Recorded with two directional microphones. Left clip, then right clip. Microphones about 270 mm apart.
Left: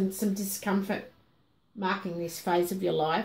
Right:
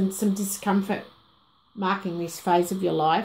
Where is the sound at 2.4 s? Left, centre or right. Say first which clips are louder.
Right 5 dB; right.